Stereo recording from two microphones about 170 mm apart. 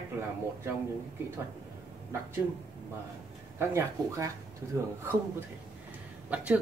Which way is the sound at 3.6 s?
15° right (ahead or behind).